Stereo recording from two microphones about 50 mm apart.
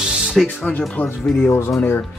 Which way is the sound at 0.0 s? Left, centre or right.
Centre.